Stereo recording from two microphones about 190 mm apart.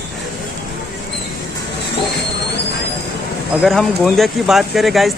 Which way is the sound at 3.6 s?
Centre (ahead or behind).